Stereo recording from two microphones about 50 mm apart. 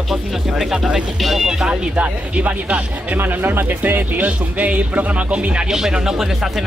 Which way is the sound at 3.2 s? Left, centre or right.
Right.